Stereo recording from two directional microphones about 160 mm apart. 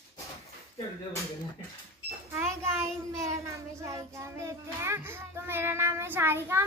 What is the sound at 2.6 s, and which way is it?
Speech, 15° right (ahead or behind).